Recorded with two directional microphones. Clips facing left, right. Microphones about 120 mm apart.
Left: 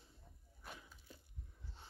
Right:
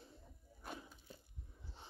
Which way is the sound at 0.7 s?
30° right (ahead or behind).